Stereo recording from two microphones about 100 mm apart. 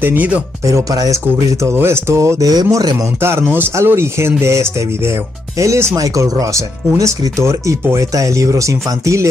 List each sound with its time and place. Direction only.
0.0 s speech: 20° right (ahead or behind)
0.7 s speech: 35° right (ahead or behind)
3.2 s speech: 25° right (ahead or behind)